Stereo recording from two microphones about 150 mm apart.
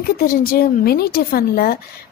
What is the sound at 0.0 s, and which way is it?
A woman's voice, 75° left (ahead or behind).